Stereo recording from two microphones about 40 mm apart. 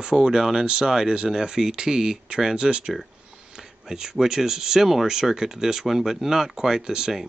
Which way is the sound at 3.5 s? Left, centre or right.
Centre.